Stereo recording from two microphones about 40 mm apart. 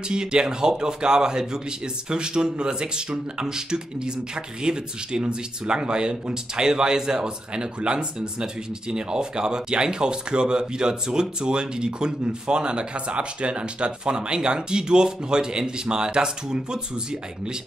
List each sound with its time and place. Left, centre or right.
0.1 s speech: right